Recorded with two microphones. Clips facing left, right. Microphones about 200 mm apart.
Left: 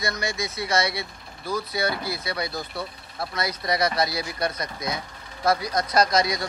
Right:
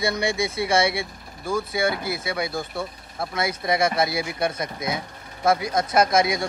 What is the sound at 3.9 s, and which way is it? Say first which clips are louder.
Speech: right 2 dB; 25° right (ahead or behind).